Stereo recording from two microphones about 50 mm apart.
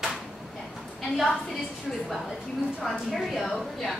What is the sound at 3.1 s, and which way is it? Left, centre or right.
Speech, centre.